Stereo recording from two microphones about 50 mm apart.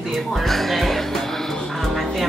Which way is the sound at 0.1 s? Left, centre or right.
Centre.